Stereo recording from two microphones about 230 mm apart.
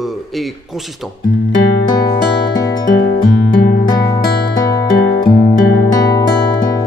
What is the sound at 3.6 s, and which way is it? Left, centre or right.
Music, left.